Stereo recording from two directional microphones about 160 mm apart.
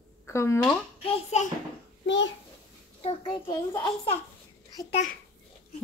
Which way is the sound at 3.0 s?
35° left (ahead or behind).